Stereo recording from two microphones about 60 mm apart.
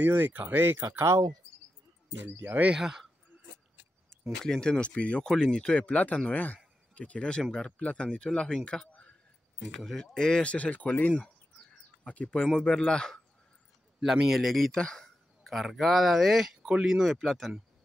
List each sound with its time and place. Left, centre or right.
0.0 s speech: right
0.6 s speech: right
1.0 s speech: right
2.1 s speech: right
2.7 s speech: centre
4.4 s speech: centre
5.2 s a man's voice: centre
9.8 s a man's voice: centre
14.2 s speech: centre
14.8 s a sound: centre
15.5 s speech: centre